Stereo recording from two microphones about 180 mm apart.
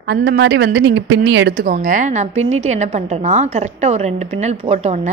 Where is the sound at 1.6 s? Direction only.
50° right (ahead or behind).